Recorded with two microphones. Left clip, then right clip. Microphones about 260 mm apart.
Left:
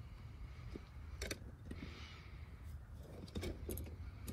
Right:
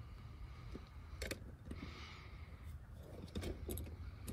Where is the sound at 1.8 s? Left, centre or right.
Centre.